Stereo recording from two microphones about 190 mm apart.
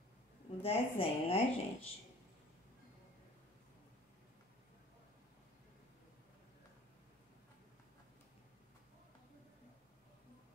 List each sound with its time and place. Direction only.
0.6 s a woman's voice: 30° left (ahead or behind)